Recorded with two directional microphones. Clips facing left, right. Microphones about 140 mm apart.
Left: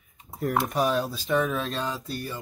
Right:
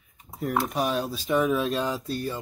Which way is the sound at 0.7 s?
Centre (ahead or behind).